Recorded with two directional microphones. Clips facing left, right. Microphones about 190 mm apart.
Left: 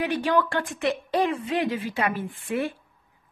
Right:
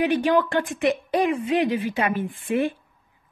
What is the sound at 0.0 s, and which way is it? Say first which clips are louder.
A woman's voice: right 4 dB; 15° right (ahead or behind).